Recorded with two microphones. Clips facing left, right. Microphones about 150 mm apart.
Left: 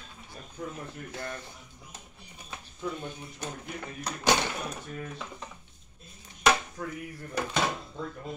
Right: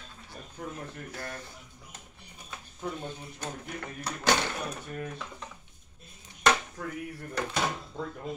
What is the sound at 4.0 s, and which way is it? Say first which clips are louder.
Speech: left 1 dB; 15° left (ahead or behind).